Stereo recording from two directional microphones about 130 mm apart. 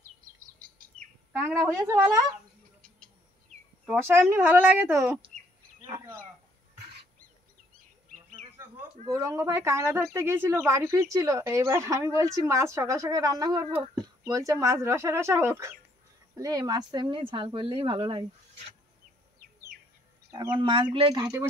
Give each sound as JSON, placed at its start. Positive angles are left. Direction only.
{"t": 1.3, "sound": "speech", "side_deg": -20}
{"t": 3.8, "sound": "speech", "side_deg": -15}
{"t": 9.0, "sound": "speech", "side_deg": -25}
{"t": 20.5, "sound": "speech", "side_deg": -40}
{"t": 21.2, "sound": "speech", "side_deg": -20}